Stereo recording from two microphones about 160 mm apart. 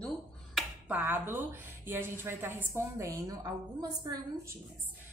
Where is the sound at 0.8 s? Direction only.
10° right (ahead or behind).